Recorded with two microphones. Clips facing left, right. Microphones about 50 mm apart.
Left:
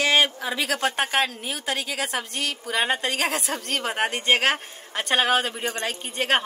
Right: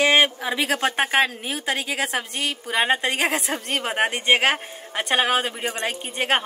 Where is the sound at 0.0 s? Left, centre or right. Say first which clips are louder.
Right 3 dB; right.